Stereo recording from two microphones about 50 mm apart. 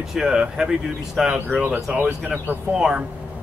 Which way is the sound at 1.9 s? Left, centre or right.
Right.